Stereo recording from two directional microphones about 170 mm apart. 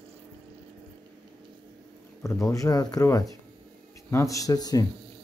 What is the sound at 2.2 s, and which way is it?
Speech, 20° left (ahead or behind).